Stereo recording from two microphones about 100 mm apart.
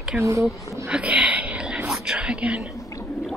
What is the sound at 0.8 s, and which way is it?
Whispering, 10° right (ahead or behind).